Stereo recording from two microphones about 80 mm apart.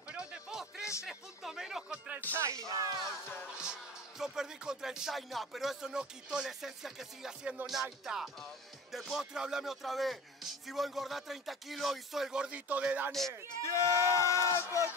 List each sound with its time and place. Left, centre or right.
0.1 s music: centre
1.0 s speech: centre
2.3 s speech: right
2.7 s music: right
4.2 s speech: centre
13.6 s a sound: left